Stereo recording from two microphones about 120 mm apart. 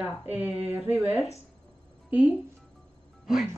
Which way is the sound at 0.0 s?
10° right (ahead or behind).